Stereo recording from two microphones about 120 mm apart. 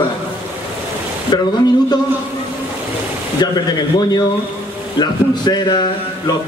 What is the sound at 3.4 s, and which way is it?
Speech, 35° left (ahead or behind).